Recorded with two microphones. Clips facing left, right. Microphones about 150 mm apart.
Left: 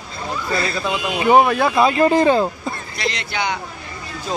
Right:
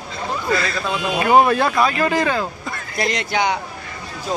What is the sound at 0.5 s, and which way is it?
Speech, 30° left (ahead or behind).